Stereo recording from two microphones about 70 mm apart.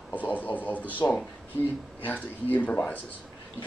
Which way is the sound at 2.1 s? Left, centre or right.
Left.